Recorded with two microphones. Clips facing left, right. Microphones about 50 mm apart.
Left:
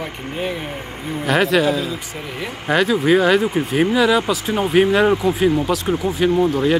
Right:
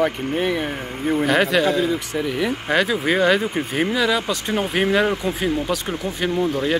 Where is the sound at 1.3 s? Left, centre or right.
Centre.